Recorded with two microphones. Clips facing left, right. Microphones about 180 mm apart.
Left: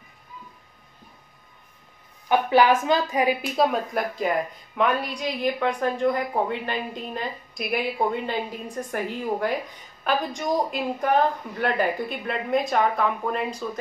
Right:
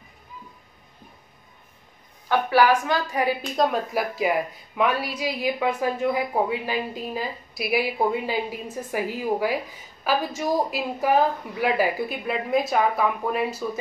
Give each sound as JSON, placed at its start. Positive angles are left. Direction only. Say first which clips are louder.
{"t": 2.2, "sound": "a woman's voice", "louder": "left 1 dB", "side_deg": 20}
{"t": 3.5, "sound": "a woman's voice", "louder": "right 3 dB", "side_deg": 0}